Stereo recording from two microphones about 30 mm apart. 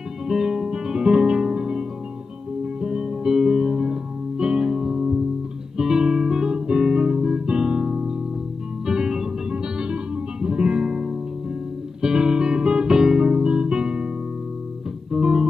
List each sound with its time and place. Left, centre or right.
0.5 s music: right
5.8 s guitar: centre
6.5 s guitar: right
8.8 s music: centre
10.4 s music: right